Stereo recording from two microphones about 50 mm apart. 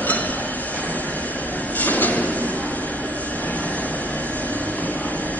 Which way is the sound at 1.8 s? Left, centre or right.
Left.